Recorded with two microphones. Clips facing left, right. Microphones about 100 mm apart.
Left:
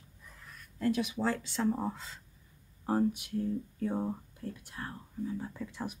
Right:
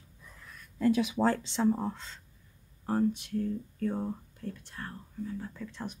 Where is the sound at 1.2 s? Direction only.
55° right (ahead or behind).